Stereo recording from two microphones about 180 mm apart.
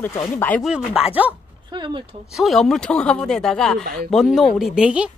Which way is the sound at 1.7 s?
25° right (ahead or behind).